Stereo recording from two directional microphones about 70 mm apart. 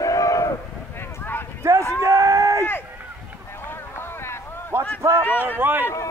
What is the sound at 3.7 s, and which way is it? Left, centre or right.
Boat, left.